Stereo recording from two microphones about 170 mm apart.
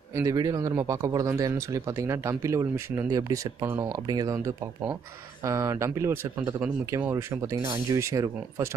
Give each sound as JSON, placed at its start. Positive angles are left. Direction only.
{"t": 0.1, "sound": "speech", "side_deg": -20}